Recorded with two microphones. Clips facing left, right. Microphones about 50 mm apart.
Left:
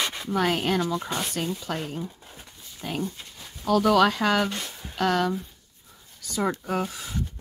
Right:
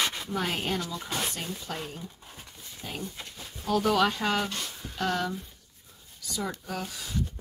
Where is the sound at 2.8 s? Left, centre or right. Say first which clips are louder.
Left 6 dB; left.